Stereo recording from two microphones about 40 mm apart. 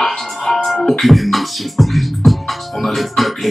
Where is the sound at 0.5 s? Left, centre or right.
Centre.